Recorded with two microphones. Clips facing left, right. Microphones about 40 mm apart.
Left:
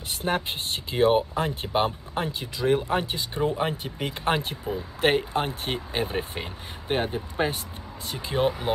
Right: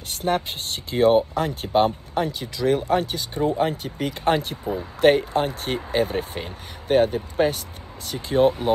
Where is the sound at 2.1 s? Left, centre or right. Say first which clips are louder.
Right 4 dB; left.